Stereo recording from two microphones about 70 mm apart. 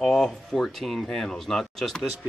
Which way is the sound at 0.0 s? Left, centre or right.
Centre.